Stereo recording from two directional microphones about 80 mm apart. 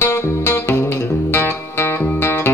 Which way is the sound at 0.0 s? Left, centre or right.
Left.